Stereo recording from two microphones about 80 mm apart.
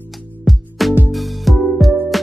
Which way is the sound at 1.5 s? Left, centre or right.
Centre.